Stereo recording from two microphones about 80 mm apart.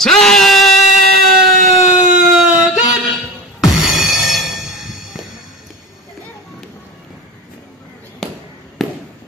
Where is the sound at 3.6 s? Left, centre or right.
Centre.